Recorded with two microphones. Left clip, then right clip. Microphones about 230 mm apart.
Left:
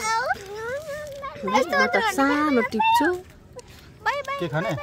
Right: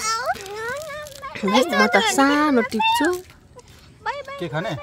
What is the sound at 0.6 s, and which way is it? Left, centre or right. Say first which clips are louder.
A child's voice: right 2 dB; right.